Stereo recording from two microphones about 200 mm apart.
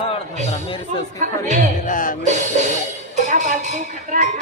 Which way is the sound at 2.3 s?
35° right (ahead or behind).